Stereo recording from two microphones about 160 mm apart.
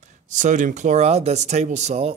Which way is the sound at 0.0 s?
50° right (ahead or behind).